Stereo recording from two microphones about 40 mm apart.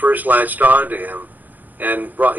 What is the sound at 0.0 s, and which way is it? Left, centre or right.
Speech, right.